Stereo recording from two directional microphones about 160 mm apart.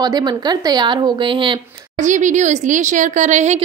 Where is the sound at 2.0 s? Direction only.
50° right (ahead or behind).